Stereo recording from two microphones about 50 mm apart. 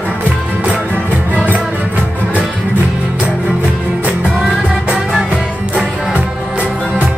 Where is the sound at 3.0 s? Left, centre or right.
Right.